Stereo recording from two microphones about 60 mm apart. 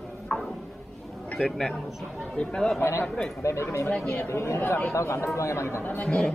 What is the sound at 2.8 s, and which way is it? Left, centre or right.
Speech, left.